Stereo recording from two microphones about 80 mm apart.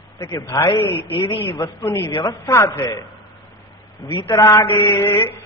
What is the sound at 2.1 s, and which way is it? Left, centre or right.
Speech, left.